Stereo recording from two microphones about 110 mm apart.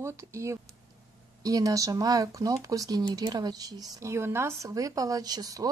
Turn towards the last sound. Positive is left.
turn(degrees=-35)  # may be behind; listen again after turning